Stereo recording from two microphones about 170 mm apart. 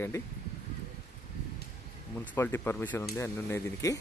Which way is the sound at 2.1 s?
15° left (ahead or behind).